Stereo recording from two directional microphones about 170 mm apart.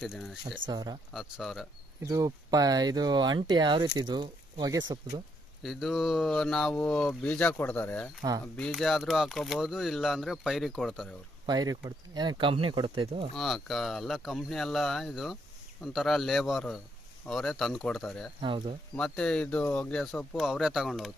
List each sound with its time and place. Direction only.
0.0 s speech: centre (ahead or behind)
0.7 s speech: 25° right (ahead or behind)
1.1 s speech: centre (ahead or behind)
2.0 s speech: 20° right (ahead or behind)
5.6 s speech: centre (ahead or behind)
11.4 s speech: 20° right (ahead or behind)
13.4 s speech: centre (ahead or behind)
18.4 s speech: 30° right (ahead or behind)
18.9 s speech: 5° left (ahead or behind)